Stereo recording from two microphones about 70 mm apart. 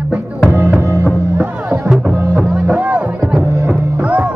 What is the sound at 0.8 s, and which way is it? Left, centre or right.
Music, right.